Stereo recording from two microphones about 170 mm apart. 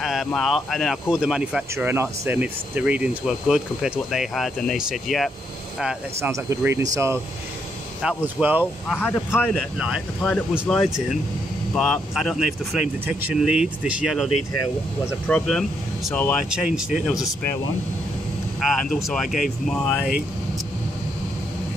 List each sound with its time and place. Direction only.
0.0 s speech: centre (ahead or behind)
6.3 s speech: 15° right (ahead or behind)
8.0 s speech: 5° right (ahead or behind)
8.8 s speech: 5° left (ahead or behind)
9.6 s speech: 5° right (ahead or behind)
18.6 s speech: centre (ahead or behind)